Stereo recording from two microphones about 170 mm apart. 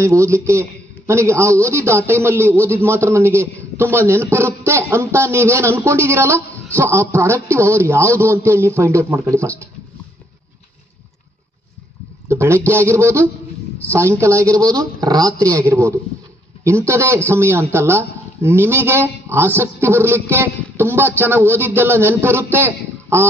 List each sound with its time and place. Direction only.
0.0 s a man's voice: 15° right (ahead or behind)
12.3 s speech: 15° right (ahead or behind)
15.4 s a man's voice: 10° left (ahead or behind)
16.8 s speech: 15° right (ahead or behind)